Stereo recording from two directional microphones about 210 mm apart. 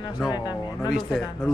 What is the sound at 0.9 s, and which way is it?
Speech, centre (ahead or behind).